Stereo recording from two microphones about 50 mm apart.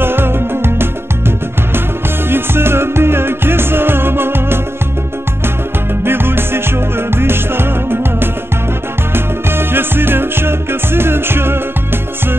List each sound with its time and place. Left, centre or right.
0.0 s music: right
2.2 s music: right
6.0 s music: right